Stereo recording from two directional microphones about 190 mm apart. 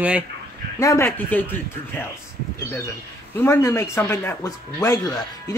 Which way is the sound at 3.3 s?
15° left (ahead or behind).